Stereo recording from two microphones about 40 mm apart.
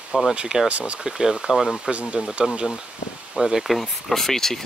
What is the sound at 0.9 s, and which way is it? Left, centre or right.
Speech, centre.